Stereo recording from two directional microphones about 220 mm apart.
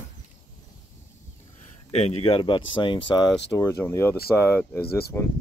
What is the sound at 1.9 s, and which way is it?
Speech, 30° left (ahead or behind).